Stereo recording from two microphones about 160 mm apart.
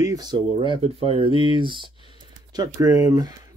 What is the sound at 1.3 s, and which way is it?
Speech, 35° left (ahead or behind).